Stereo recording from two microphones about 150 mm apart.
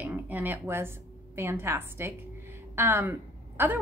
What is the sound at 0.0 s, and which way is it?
A woman's voice, 10° right (ahead or behind).